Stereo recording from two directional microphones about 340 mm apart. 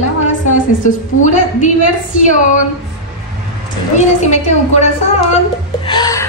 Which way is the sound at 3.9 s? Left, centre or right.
Centre.